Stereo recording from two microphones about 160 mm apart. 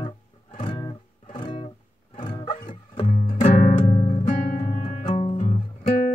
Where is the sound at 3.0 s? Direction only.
40° left (ahead or behind).